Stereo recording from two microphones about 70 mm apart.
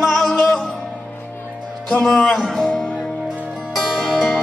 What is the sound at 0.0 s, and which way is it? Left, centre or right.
Music, centre.